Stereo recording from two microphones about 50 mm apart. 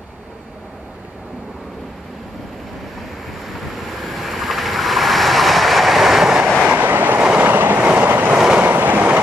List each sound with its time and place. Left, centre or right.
3.5 s vehicle: centre
6.7 s train: right
7.2 s train: right
7.4 s train: right
8.0 s vehicle: right
8.7 s train: right